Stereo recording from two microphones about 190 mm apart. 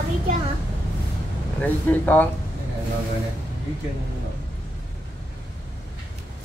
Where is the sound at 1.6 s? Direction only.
10° left (ahead or behind).